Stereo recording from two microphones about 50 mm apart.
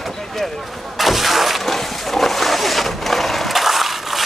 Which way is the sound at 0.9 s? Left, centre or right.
Centre.